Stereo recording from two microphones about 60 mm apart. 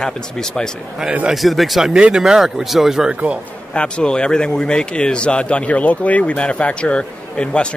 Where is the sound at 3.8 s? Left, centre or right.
Centre.